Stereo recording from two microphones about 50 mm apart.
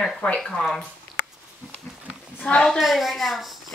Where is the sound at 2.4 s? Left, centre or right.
Left.